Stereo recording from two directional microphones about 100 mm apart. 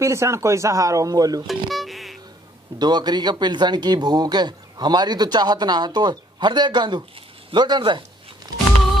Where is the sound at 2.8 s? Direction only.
45° right (ahead or behind).